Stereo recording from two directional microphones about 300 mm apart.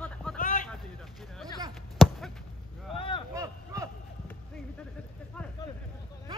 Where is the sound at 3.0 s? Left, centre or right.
Centre.